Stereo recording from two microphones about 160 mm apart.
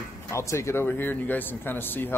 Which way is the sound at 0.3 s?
20° left (ahead or behind).